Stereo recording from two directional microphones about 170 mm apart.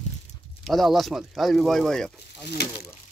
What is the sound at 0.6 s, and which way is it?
Speech, centre (ahead or behind).